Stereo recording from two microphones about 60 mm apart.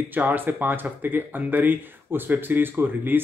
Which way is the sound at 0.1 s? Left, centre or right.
Right.